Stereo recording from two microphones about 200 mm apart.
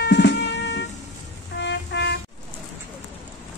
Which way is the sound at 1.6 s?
60° left (ahead or behind).